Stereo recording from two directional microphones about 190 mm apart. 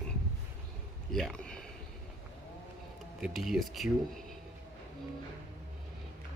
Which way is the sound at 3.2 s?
Centre (ahead or behind).